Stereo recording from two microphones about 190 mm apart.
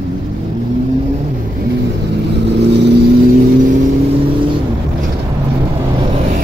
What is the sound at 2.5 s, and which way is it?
Vehicle, 65° right (ahead or behind).